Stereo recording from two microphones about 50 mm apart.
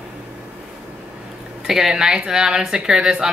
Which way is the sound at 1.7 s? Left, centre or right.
Centre.